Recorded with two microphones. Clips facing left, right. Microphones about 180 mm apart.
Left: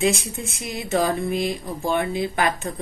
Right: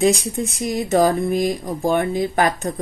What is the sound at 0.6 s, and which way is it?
Speech, 40° right (ahead or behind).